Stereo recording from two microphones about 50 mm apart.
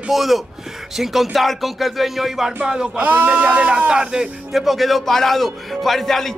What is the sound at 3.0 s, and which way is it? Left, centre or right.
Speech, right.